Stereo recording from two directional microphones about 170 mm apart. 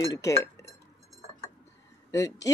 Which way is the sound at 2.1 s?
20° left (ahead or behind).